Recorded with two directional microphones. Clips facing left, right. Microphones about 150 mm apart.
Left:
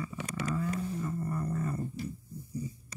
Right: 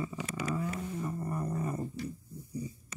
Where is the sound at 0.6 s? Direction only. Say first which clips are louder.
Left 2 dB; 15° right (ahead or behind).